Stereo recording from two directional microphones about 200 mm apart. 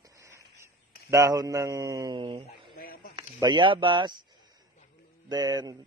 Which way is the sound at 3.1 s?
20° right (ahead or behind).